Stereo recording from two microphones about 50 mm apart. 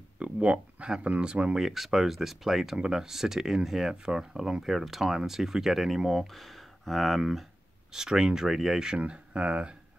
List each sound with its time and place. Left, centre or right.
0.2 s a sound: right
1.0 s speech: right
1.6 s speech: centre
9.0 s speech: right